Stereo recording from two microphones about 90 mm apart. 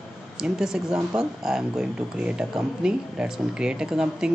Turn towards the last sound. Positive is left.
turn(degrees=-5)  # may be behind; listen again after turning